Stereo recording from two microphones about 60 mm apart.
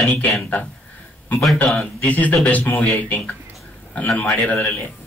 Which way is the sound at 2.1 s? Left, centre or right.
Left.